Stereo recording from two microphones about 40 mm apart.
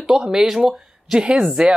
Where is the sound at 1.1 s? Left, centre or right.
Right.